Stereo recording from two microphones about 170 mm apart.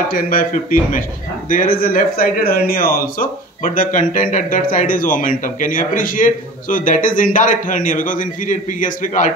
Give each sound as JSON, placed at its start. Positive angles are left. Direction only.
{"t": 0.1, "sound": "a man's voice", "side_deg": 55}